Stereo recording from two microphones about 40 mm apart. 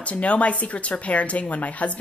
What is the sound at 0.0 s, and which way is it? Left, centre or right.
Speech, left.